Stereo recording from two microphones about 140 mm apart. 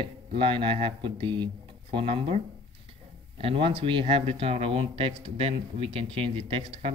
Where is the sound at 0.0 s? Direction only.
40° right (ahead or behind).